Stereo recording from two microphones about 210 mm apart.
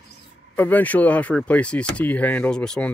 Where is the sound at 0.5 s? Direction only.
10° left (ahead or behind).